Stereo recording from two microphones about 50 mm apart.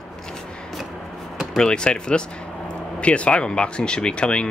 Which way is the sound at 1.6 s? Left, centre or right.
Centre.